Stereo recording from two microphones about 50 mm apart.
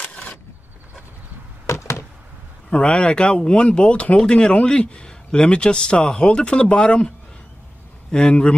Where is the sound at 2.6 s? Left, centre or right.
Left.